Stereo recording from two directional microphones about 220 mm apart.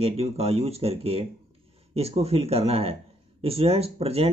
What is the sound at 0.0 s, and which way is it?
Speech, 25° right (ahead or behind).